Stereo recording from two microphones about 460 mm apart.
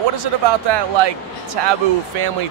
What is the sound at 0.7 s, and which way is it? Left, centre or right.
Speech, right.